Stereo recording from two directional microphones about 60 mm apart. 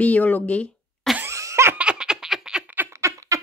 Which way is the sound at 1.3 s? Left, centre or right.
Right.